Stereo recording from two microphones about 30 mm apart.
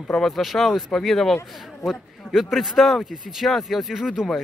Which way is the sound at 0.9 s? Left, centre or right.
Centre.